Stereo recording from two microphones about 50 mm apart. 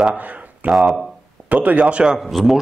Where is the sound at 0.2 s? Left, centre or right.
Right.